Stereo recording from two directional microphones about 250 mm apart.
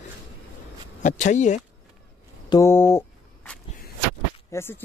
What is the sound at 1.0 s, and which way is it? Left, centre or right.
Speech, left.